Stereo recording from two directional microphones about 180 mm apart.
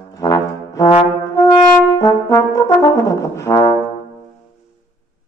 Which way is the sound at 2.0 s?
20° left (ahead or behind).